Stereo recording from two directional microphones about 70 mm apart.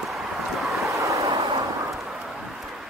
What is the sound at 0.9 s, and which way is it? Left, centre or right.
Vehicle, right.